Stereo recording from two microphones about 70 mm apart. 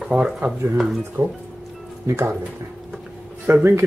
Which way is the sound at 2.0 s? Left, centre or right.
Right.